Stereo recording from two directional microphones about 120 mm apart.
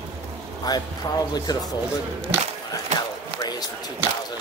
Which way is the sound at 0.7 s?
35° left (ahead or behind).